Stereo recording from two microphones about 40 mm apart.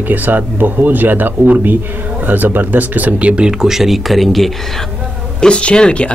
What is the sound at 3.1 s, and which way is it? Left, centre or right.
Speech, right.